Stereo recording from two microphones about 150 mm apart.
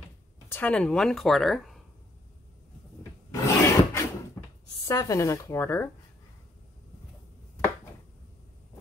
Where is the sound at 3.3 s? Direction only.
20° left (ahead or behind).